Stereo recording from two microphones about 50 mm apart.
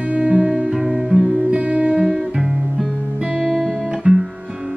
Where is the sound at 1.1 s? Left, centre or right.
Centre.